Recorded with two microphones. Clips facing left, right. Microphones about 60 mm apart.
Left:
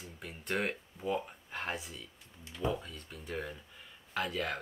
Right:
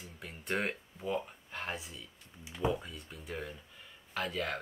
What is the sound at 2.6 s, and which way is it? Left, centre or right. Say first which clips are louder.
Speech: right 1 dB; centre.